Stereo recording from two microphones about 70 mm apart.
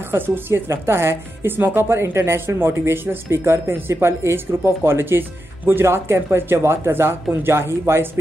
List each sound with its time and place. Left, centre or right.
0.1 s speech: right